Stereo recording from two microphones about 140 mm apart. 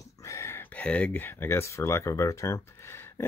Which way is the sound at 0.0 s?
20° left (ahead or behind).